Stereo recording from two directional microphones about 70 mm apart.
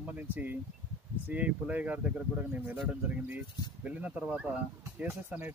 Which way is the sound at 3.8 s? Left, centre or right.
Right.